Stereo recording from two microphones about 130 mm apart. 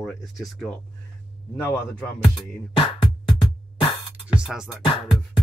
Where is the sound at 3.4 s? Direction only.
40° left (ahead or behind).